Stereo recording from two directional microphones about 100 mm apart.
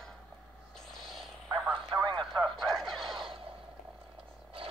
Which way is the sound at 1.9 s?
50° right (ahead or behind).